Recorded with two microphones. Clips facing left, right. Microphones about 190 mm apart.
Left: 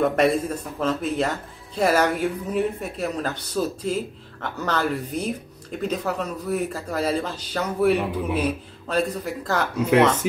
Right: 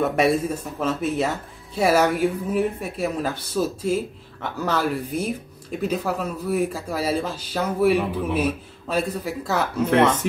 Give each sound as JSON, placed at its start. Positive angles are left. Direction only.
{"t": 0.0, "sound": "speech", "side_deg": -5}